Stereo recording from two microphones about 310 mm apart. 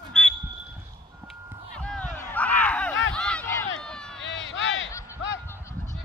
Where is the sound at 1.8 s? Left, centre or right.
Centre.